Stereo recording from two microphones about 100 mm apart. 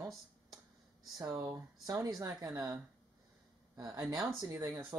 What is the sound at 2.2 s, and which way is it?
Speech, 35° right (ahead or behind).